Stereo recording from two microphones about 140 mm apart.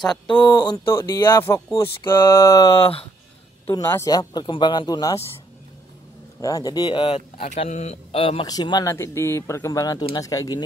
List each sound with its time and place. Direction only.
0.4 s speech: 15° left (ahead or behind)
2.7 s speech: 40° left (ahead or behind)
3.6 s speech: 20° left (ahead or behind)
6.4 s speech: 25° left (ahead or behind)
7.2 s a man's voice: 55° left (ahead or behind)
8.5 s speech: 30° left (ahead or behind)